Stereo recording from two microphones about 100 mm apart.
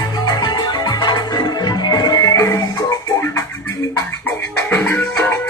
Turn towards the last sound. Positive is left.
turn(degrees=25)  # may be behind; listen again after turning